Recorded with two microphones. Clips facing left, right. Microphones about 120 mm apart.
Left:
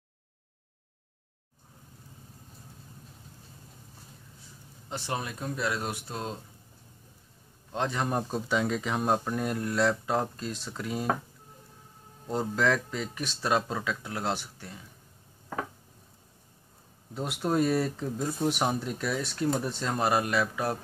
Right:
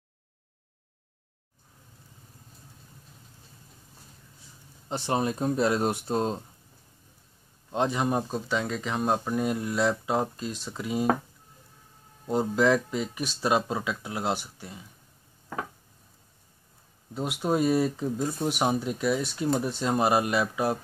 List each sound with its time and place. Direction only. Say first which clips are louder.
4.8 s speech: right 7 dB; 25° right (ahead or behind)
7.7 s speech: right 3 dB; 15° right (ahead or behind)
12.3 s speech: right 4 dB; 10° right (ahead or behind)
17.1 s speech: right 2 dB; 5° right (ahead or behind)